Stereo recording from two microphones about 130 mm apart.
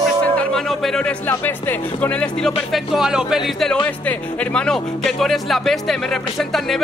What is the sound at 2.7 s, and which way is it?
Speech, centre (ahead or behind).